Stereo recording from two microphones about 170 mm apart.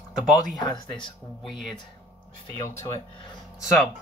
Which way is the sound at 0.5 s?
25° left (ahead or behind).